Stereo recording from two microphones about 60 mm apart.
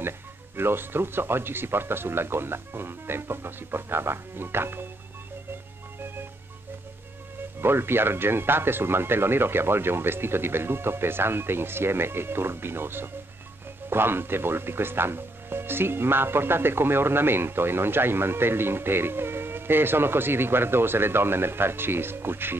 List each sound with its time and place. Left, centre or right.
0.6 s speech: right
7.6 s speech: right